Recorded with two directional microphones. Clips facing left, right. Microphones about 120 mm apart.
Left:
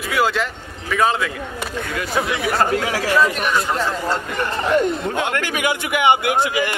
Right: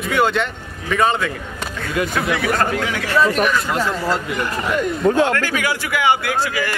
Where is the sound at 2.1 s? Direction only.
20° left (ahead or behind).